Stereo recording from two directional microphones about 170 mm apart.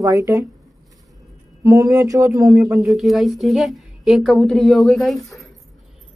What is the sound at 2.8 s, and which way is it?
A woman's voice, centre (ahead or behind).